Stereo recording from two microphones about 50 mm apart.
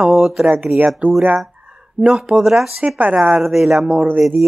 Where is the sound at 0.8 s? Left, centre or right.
Right; by 3.9 s centre.